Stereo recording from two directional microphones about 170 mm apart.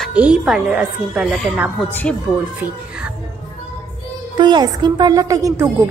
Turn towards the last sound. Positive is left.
turn(degrees=-15)  # may be behind; listen again after turning